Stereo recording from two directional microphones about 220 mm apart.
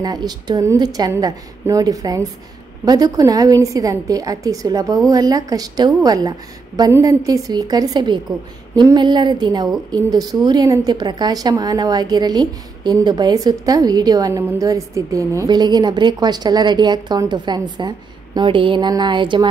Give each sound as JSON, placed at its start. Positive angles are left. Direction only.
{"t": 0.0, "sound": "a woman's voice", "side_deg": -20}